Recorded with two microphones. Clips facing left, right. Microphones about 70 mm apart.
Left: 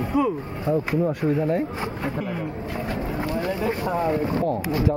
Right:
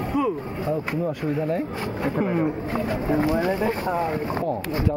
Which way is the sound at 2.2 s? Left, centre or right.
Right.